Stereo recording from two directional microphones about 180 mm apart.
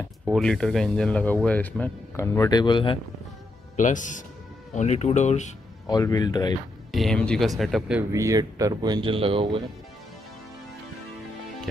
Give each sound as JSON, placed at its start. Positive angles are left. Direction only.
{"t": 0.3, "sound": "speech", "side_deg": 5}
{"t": 3.7, "sound": "speech", "side_deg": 45}
{"t": 5.9, "sound": "speech", "side_deg": 20}
{"t": 6.9, "sound": "speech", "side_deg": 0}
{"t": 8.1, "sound": "speech", "side_deg": -20}